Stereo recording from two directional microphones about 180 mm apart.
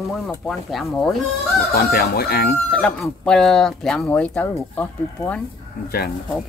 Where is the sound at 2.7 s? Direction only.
5° left (ahead or behind).